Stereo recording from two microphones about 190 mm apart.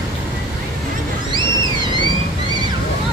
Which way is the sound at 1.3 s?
25° right (ahead or behind).